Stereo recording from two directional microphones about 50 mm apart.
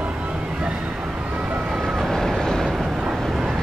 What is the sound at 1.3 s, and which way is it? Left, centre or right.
Vehicle, right.